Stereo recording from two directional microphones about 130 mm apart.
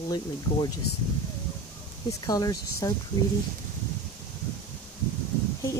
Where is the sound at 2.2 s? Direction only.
30° left (ahead or behind).